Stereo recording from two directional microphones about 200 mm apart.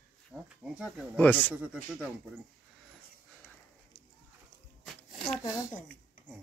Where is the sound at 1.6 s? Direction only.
5° right (ahead or behind).